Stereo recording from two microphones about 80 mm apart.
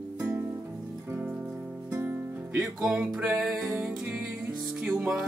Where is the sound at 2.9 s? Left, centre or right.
Centre.